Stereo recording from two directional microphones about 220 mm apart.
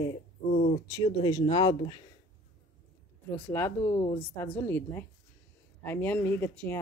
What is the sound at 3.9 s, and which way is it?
Speech, 25° left (ahead or behind).